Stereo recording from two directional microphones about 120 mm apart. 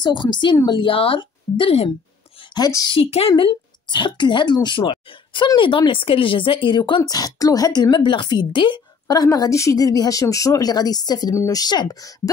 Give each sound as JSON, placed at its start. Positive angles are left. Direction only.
{"t": 0.0, "sound": "a woman's voice", "side_deg": 40}
{"t": 2.5, "sound": "a woman's voice", "side_deg": 30}
{"t": 3.0, "sound": "a woman's voice", "side_deg": 50}